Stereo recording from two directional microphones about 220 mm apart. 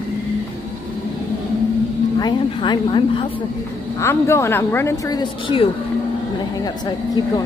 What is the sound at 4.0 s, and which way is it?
Speech, 10° left (ahead or behind).